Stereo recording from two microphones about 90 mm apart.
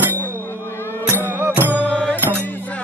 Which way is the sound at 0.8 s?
25° left (ahead or behind).